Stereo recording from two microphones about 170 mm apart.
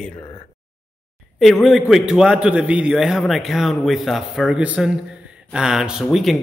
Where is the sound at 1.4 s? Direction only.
Centre (ahead or behind).